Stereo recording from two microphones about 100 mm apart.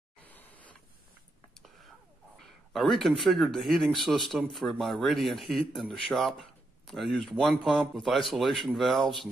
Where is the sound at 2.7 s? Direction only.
Centre (ahead or behind).